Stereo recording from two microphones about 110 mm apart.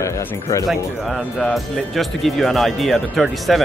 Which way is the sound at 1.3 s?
Centre (ahead or behind).